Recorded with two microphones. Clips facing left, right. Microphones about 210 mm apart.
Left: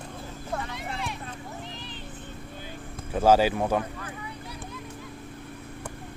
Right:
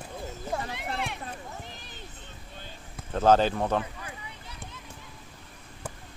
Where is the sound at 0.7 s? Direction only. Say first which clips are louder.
Right 1 dB; 60° right (ahead or behind).